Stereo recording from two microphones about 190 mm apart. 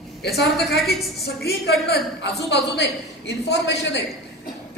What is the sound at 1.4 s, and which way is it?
A woman's voice, 60° left (ahead or behind).